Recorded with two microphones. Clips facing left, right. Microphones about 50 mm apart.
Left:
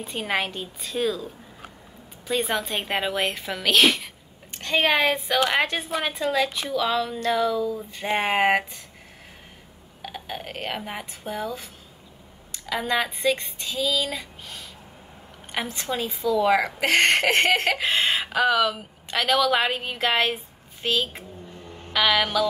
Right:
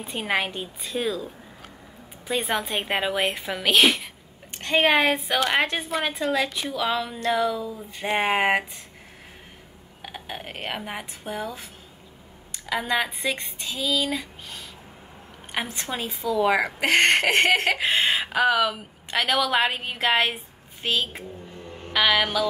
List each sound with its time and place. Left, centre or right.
0.0 s a woman's voice: centre
4.6 s a woman's voice: centre
5.5 s a woman's voice: centre
10.0 s a woman's voice: centre
12.6 s a woman's voice: centre
13.4 s a woman's voice: right
15.5 s a woman's voice: centre
15.9 s a woman's voice: right
16.3 s a woman's voice: centre
17.6 s a woman's voice: right
18.2 s a woman's voice: centre